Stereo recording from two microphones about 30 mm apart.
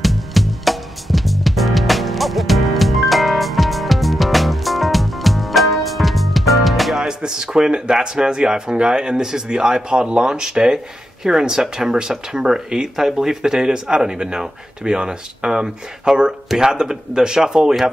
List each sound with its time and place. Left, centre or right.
0.0 s music: centre
7.0 s speech: right